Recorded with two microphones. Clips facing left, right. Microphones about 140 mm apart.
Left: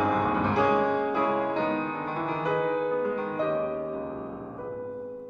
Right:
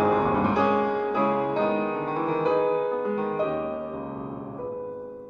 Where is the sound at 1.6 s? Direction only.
35° right (ahead or behind).